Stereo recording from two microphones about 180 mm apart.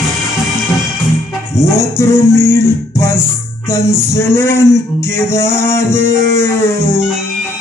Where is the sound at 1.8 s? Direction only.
15° left (ahead or behind).